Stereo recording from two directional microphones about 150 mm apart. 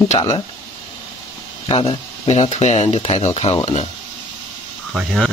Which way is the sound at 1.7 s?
40° left (ahead or behind).